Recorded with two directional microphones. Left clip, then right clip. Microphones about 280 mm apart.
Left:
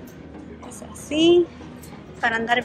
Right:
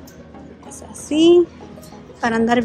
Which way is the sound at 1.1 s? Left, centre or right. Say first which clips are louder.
Right 4 dB; centre.